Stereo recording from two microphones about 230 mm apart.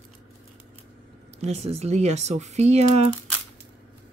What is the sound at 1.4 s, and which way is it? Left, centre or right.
Speech, right.